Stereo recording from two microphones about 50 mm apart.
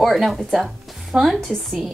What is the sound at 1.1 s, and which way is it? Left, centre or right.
Speech, centre.